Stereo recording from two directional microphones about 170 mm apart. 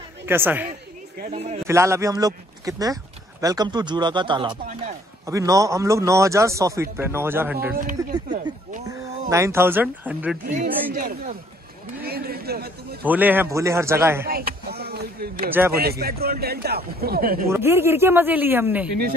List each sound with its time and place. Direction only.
0.3 s a man's voice: 10° right (ahead or behind)
1.3 s a man's voice: 40° right (ahead or behind)
1.7 s a man's voice: 15° right (ahead or behind)
9.3 s a man's voice: 15° right (ahead or behind)
10.5 s speech: 50° right (ahead or behind)
12.0 s a sound: 65° right (ahead or behind)
13.0 s a man's voice: 10° right (ahead or behind)
14.2 s a sound: 65° right (ahead or behind)
15.7 s a man's voice: 65° right (ahead or behind)
17.5 s a man's voice: 15° right (ahead or behind)